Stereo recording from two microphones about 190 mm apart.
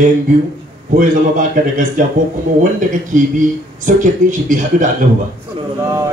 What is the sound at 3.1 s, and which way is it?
Speech, 40° right (ahead or behind).